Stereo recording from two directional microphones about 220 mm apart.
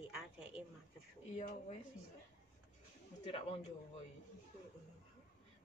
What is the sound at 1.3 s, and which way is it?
Speech, 30° left (ahead or behind).